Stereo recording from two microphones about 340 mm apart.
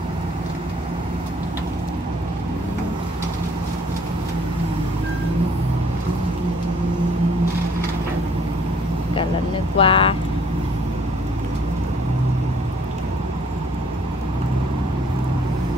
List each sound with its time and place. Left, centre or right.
9.8 s speech: centre